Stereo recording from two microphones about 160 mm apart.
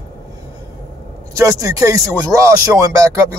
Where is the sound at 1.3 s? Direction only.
20° right (ahead or behind).